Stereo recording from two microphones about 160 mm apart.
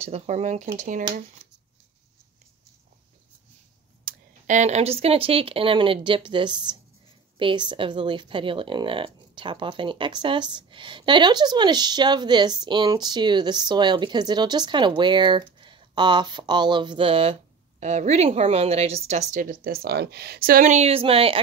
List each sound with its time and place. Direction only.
0.0 s speech: 45° right (ahead or behind)
4.0 s a woman's voice: 50° right (ahead or behind)